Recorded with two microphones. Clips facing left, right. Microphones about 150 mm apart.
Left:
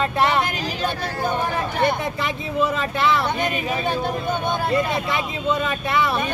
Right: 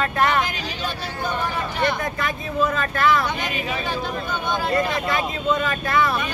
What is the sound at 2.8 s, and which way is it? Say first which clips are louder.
Speech: right 1 dB; 25° left (ahead or behind).